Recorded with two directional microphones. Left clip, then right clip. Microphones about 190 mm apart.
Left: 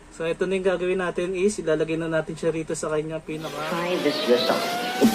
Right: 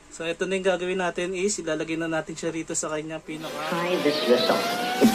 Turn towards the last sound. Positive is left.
turn(degrees=0)  # may be behind; listen again after turning